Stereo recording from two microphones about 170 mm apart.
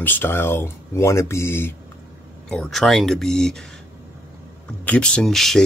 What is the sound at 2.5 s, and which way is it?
Speech, 5° left (ahead or behind).